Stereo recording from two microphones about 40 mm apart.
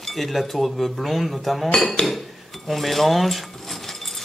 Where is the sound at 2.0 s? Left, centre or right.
Left.